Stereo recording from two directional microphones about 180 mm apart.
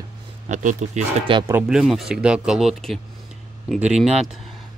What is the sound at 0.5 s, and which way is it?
Speech, 45° right (ahead or behind).